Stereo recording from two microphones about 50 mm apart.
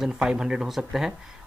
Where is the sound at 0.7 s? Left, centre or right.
Centre.